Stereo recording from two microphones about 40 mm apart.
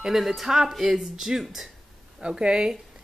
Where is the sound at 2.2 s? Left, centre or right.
Right.